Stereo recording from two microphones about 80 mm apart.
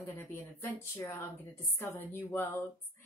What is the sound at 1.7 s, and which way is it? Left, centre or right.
Speech, left.